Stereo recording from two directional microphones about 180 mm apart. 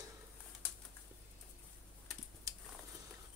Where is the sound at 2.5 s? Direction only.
20° right (ahead or behind).